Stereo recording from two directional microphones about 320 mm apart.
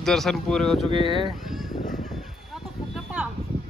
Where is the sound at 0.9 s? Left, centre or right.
Centre.